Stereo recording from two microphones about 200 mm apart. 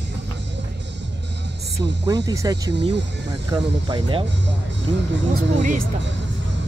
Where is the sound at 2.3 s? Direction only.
20° right (ahead or behind).